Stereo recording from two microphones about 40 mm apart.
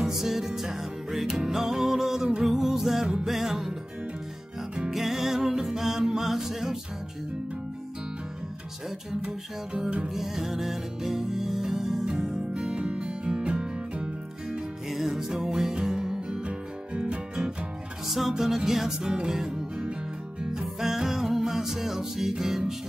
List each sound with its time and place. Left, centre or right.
0.0 s music: centre
4.7 s music: centre
9.8 s music: right
10.0 s music: centre; by 14.6 s right
14.9 s music: centre; by 17.5 s right
18.0 s music: centre